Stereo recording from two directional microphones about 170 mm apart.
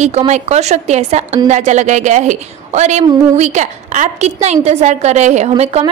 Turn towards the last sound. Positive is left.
turn(degrees=-40)  # may be behind; listen again after turning